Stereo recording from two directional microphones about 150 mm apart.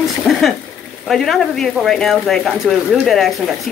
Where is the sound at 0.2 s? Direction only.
Centre (ahead or behind).